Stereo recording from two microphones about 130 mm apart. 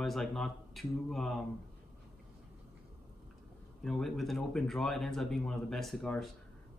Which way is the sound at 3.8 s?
Centre (ahead or behind).